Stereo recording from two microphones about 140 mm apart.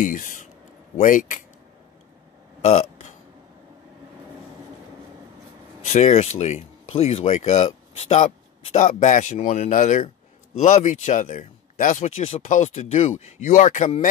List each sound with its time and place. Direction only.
0.0 s speech: 65° left (ahead or behind)
2.6 s speech: 55° left (ahead or behind)
5.9 s speech: 55° left (ahead or behind)
12.2 s speech: 45° left (ahead or behind)
12.4 s speech: 60° left (ahead or behind)